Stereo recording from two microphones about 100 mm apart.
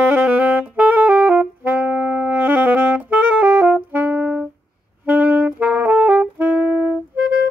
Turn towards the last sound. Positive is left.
turn(degrees=-5)  # may be behind; listen again after turning